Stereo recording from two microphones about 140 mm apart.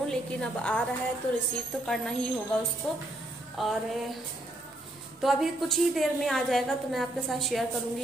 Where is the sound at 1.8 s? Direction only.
5° left (ahead or behind).